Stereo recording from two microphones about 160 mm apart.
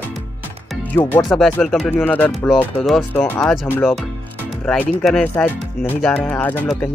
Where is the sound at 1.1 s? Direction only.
5° left (ahead or behind).